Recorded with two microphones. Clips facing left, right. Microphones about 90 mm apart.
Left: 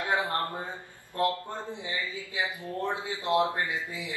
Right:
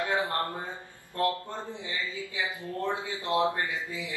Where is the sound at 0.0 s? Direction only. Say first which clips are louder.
Even; 20° left (ahead or behind).